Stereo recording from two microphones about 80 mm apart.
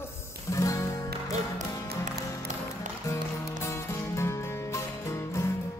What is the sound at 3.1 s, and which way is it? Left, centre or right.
Music, left.